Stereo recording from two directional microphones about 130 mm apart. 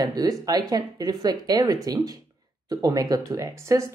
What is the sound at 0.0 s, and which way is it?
Speech, 30° right (ahead or behind).